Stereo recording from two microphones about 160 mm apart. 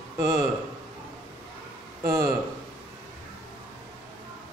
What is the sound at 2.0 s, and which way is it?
Speech, 20° right (ahead or behind).